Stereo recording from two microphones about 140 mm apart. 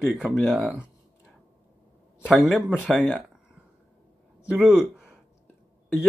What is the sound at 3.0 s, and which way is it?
Speech, 5° left (ahead or behind).